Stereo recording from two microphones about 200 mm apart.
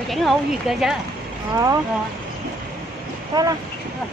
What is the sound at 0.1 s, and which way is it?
Speech, centre (ahead or behind).